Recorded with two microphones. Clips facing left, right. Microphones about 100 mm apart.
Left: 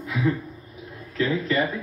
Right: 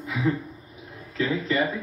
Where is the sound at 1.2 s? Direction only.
5° right (ahead or behind).